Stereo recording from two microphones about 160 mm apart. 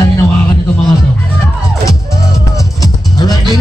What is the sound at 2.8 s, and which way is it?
Music, 25° left (ahead or behind).